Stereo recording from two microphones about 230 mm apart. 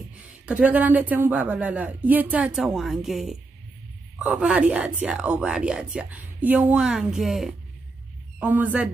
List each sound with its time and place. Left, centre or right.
0.5 s speech: centre